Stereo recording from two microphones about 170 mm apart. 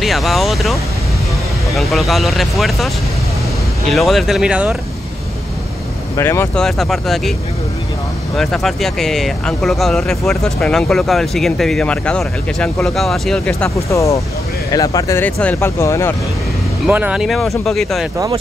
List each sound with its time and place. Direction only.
0.0 s speech: centre (ahead or behind)
1.8 s speech: centre (ahead or behind)
3.9 s speech: centre (ahead or behind)
6.1 s speech: 15° left (ahead or behind)
6.6 s speech: centre (ahead or behind)
8.4 s speech: centre (ahead or behind)
13.8 s speech: 20° left (ahead or behind)
16.8 s speech: 5° right (ahead or behind)